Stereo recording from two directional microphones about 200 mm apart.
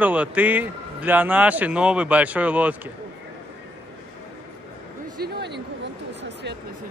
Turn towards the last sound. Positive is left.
turn(degrees=-60)  # may be behind; listen again after turning